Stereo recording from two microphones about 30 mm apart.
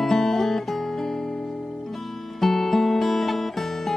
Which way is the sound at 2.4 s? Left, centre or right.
Centre.